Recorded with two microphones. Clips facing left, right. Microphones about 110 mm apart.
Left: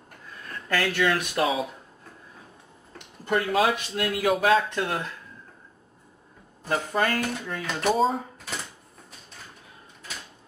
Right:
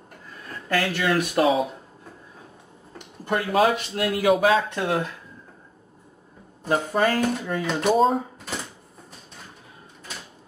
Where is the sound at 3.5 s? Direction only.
40° right (ahead or behind).